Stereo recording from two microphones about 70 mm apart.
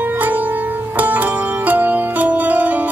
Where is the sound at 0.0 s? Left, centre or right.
Right.